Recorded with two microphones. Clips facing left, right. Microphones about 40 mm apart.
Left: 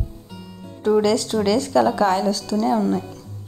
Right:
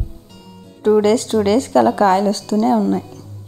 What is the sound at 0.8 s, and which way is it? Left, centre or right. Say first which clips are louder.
A woman's voice: right 4 dB; right.